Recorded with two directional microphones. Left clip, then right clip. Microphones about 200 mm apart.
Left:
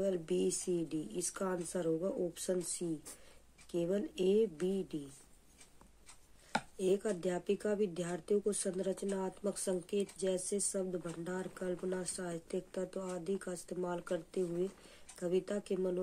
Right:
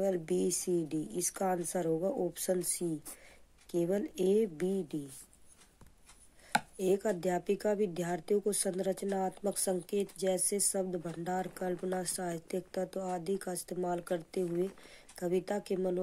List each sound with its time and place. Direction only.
0.0 s a woman's voice: 25° right (ahead or behind)
6.8 s speech: 25° right (ahead or behind)